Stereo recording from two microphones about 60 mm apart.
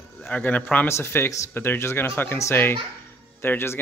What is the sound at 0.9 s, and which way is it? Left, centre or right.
Speech, left.